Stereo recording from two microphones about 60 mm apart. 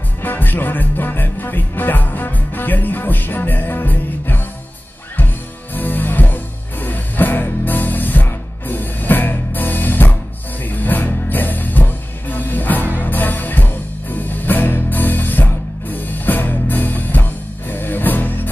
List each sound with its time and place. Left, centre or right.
0.2 s music: left
5.8 s music: left